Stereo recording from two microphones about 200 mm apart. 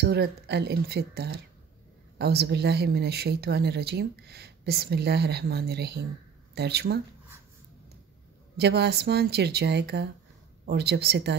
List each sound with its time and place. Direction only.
0.0 s a woman's voice: 55° right (ahead or behind)
8.5 s a woman's voice: 55° right (ahead or behind)